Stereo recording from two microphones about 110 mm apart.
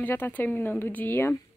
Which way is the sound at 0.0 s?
15° left (ahead or behind).